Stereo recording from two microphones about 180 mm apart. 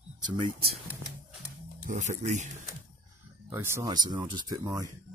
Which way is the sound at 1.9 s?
45° right (ahead or behind).